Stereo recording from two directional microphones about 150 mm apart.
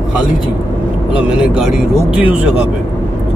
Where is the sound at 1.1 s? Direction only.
5° right (ahead or behind).